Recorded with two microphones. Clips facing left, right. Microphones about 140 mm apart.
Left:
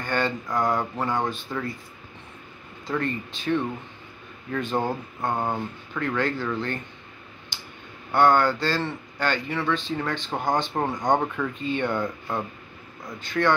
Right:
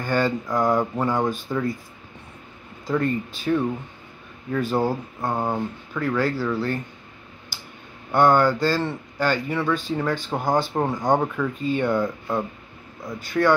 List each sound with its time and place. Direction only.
0.0 s speech: 10° right (ahead or behind)
2.9 s speech: 10° right (ahead or behind)
8.1 s speech: 10° right (ahead or behind)